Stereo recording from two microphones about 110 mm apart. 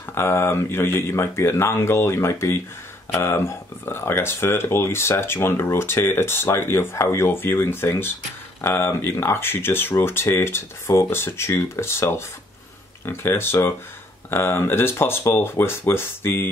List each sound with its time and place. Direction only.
0.1 s speech: 20° left (ahead or behind)